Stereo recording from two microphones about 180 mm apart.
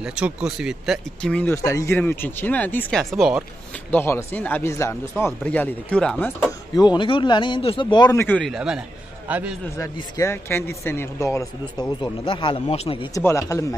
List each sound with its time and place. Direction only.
0.0 s speech: 5° right (ahead or behind)
3.9 s a man's voice: 10° left (ahead or behind)
8.5 s a man's voice: 5° right (ahead or behind)
9.8 s a man's voice: 20° left (ahead or behind)
13.1 s speech: 15° left (ahead or behind)